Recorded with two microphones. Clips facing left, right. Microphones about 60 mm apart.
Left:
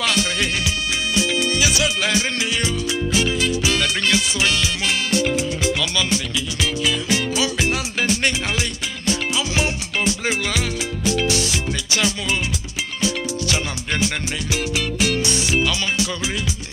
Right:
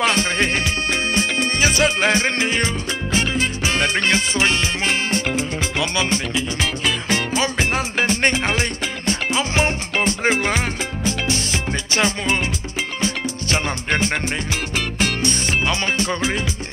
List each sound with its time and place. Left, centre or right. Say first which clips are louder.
0.0 s music: right 3 dB; right